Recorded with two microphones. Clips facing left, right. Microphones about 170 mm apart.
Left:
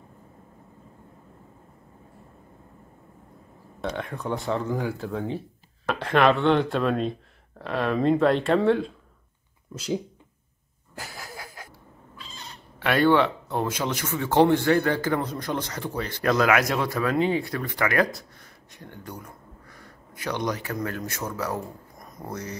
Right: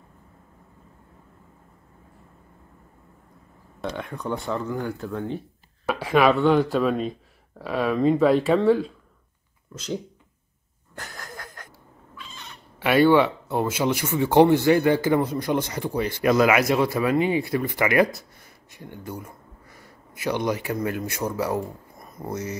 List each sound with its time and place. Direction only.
3.8 s speech: centre (ahead or behind)
9.7 s speech: 15° left (ahead or behind)
11.0 s a sound: 5° left (ahead or behind)
12.2 s owl: 35° left (ahead or behind)
12.7 s speech: 5° right (ahead or behind)